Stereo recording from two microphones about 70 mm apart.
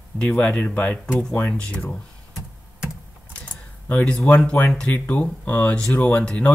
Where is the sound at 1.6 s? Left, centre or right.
Centre.